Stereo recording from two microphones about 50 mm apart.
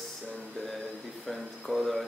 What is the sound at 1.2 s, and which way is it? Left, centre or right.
Speech, centre.